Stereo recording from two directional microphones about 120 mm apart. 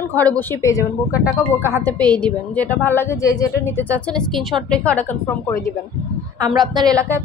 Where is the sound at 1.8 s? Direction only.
10° left (ahead or behind).